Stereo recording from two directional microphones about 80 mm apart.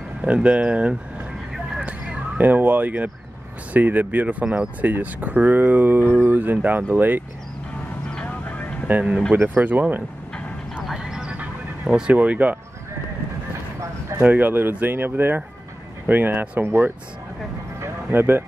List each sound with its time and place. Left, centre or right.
0.2 s speech: centre
1.9 s a sound: centre
3.7 s speech: right
8.1 s vehicle: centre
8.8 s speech: centre
10.8 s music: centre
11.1 s music: centre
14.2 s speech: right
17.7 s a sound: right